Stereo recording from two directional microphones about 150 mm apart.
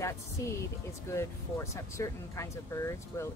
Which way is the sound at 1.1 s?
20° left (ahead or behind).